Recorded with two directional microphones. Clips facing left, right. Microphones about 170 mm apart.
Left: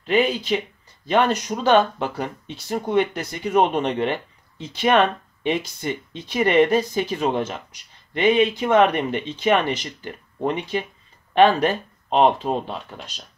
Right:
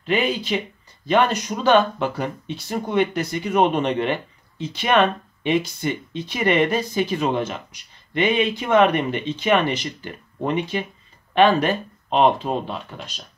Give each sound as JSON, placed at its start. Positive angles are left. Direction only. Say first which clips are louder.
{"t": 0.0, "sound": "speech", "louder": "left 2 dB", "side_deg": 35}